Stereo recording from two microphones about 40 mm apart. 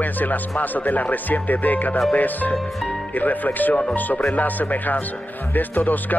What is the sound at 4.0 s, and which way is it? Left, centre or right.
Speech, left.